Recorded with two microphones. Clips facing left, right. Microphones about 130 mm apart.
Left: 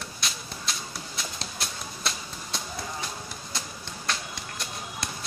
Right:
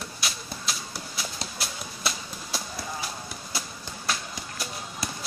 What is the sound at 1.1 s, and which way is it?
Horse, 5° right (ahead or behind).